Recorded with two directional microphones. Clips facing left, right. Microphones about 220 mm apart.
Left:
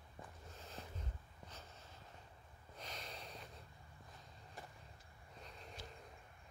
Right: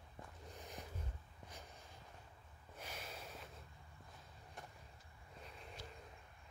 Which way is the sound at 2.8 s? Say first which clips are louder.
Even; 10° right (ahead or behind).